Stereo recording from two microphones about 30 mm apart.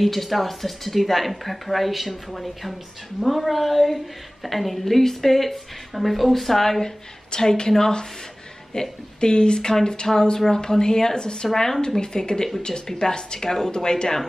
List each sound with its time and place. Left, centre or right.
0.0 s a woman's voice: centre
7.2 s speech: left
11.5 s speech: centre